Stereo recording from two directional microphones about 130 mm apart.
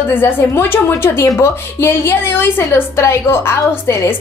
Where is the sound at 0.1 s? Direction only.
15° left (ahead or behind).